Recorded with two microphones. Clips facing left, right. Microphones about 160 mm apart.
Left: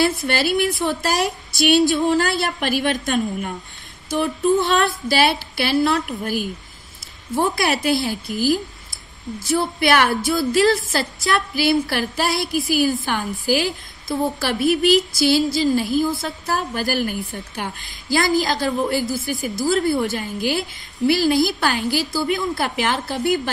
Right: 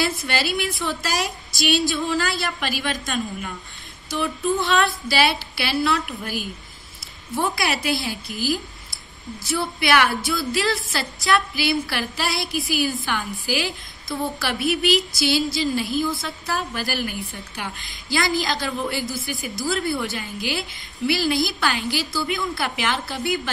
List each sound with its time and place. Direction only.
0.0 s a woman's voice: 45° left (ahead or behind)